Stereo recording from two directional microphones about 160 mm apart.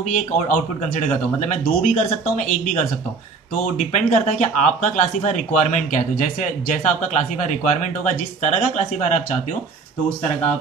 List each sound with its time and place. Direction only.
0.0 s speech: 50° left (ahead or behind)